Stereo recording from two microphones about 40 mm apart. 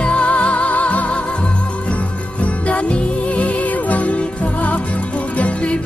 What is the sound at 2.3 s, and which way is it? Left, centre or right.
Music, left.